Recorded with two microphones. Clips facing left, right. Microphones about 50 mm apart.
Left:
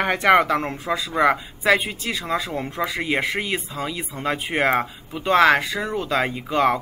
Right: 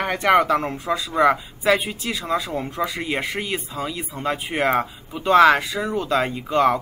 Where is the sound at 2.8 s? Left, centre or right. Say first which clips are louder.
Left 3 dB; centre.